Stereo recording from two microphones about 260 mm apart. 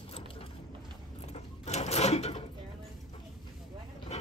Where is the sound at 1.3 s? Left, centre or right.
Left.